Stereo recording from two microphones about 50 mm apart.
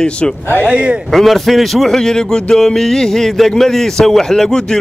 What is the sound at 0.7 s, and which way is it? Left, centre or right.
Speech, right.